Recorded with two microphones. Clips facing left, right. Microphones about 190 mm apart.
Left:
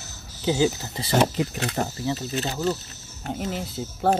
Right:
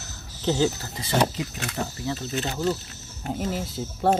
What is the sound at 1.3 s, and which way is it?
Speech, 55° left (ahead or behind).